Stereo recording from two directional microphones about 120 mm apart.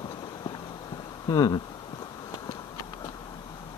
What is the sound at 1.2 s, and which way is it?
Speech, 35° left (ahead or behind).